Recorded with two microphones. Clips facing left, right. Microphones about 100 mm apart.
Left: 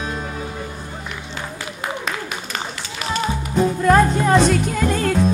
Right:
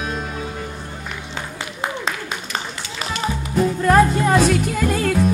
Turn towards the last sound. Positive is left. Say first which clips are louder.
# even
turn(degrees=-5)  # may be behind; listen again after turning